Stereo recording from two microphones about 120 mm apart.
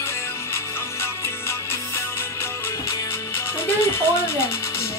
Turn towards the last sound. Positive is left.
turn(degrees=20)  # may be behind; listen again after turning